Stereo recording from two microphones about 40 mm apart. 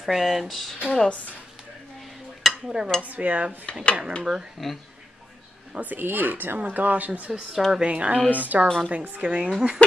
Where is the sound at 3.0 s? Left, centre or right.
Right.